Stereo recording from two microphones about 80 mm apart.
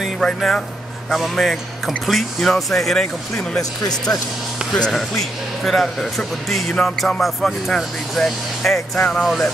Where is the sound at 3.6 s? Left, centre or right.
Left.